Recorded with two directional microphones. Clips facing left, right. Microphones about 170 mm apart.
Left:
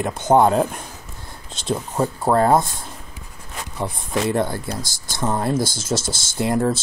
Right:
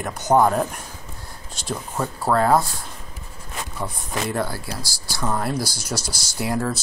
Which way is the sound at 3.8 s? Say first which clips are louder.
Left 6 dB; 20° left (ahead or behind).